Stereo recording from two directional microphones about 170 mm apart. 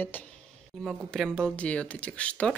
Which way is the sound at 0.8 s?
Centre (ahead or behind).